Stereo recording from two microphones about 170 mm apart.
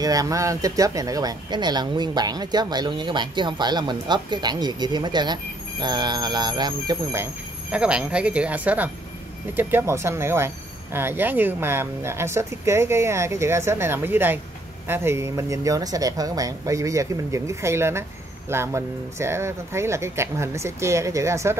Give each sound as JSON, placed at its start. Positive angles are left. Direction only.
{"t": 0.0, "sound": "speech", "side_deg": -20}
{"t": 7.7, "sound": "speech", "side_deg": -5}